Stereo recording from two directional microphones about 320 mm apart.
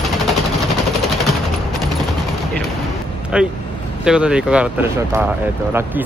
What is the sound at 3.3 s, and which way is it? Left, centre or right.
Speech, centre.